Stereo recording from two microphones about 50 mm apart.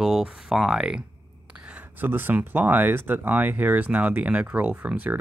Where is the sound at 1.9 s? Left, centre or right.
Right.